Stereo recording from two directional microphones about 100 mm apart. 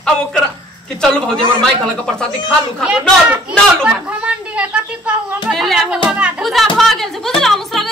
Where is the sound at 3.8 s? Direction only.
15° right (ahead or behind).